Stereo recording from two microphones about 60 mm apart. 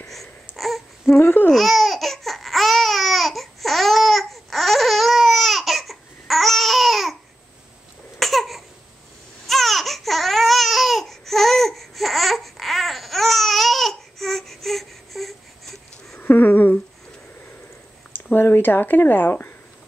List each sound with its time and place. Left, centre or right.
0.0 s babbling: centre
1.2 s speech: left
1.5 s laughter: centre
8.2 s a sound: centre
16.2 s a sound: left
18.3 s speech: left